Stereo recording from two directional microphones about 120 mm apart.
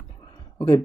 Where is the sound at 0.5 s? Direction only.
50° left (ahead or behind).